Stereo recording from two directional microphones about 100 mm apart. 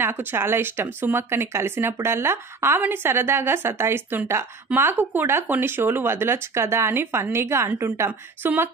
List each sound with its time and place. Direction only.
0.0 s speech: 20° right (ahead or behind)